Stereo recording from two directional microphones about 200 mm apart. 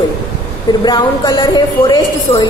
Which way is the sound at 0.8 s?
20° left (ahead or behind).